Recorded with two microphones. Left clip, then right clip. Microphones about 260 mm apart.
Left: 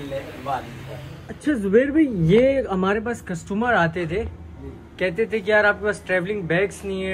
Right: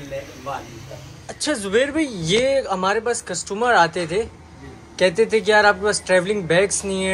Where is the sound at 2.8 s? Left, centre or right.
Centre.